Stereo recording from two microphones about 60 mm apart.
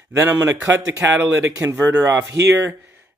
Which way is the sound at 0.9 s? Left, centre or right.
Right.